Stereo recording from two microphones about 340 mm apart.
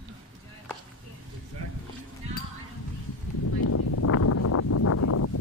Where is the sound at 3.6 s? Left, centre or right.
Left.